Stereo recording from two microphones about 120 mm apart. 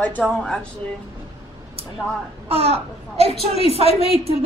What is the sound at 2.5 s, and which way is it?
Speech, 55° right (ahead or behind).